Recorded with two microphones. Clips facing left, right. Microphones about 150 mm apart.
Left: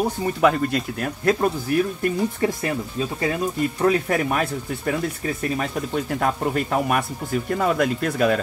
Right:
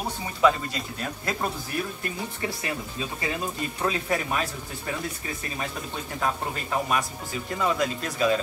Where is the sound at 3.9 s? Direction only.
55° left (ahead or behind).